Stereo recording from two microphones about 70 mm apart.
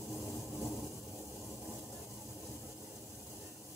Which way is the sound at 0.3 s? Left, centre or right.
Left.